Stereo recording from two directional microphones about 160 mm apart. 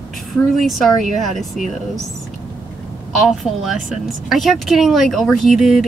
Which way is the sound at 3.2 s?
Centre (ahead or behind).